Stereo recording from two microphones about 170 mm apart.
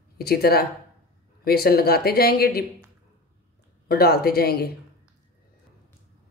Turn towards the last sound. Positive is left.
turn(degrees=65)  # may be behind; listen again after turning